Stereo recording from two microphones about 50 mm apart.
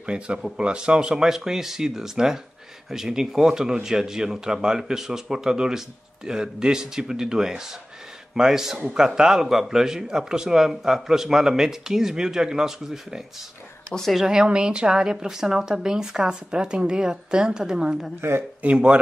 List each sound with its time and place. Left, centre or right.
0.0 s speech: centre